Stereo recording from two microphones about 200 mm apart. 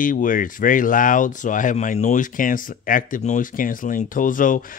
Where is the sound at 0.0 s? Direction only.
45° left (ahead or behind).